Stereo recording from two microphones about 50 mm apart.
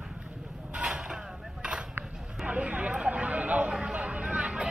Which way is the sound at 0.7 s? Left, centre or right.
Centre.